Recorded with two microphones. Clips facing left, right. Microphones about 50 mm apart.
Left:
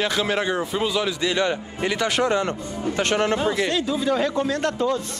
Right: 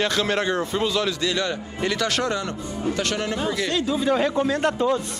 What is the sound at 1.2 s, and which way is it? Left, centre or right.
A man's voice, left.